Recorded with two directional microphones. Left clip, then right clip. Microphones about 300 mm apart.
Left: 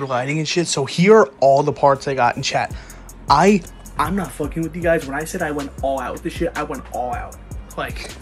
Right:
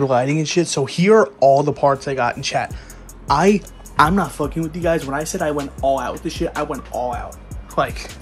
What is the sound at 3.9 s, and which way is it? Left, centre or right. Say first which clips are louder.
Speech: right 6 dB; right.